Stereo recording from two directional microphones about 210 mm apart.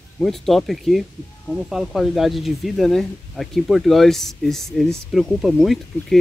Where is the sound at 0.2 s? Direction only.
Centre (ahead or behind).